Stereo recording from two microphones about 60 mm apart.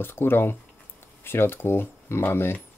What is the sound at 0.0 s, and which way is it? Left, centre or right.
Speech, left.